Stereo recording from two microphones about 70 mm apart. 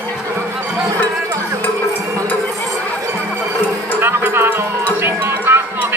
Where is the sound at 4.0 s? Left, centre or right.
Right.